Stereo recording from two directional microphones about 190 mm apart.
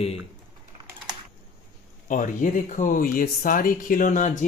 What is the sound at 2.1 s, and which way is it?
Speech, 45° left (ahead or behind).